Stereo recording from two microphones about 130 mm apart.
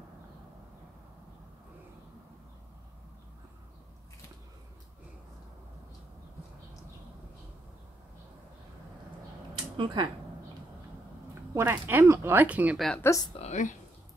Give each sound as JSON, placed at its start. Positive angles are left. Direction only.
{"t": 9.8, "sound": "speech", "side_deg": -40}
{"t": 11.5, "sound": "speech", "side_deg": -15}
{"t": 12.7, "sound": "speech", "side_deg": 0}
{"t": 13.0, "sound": "speech", "side_deg": 25}
{"t": 13.4, "sound": "a woman's voice", "side_deg": 70}